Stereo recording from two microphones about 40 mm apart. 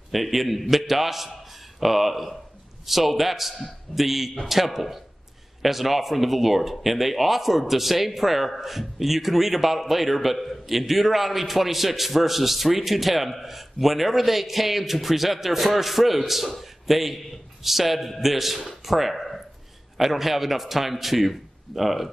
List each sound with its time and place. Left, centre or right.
0.1 s a man's voice: centre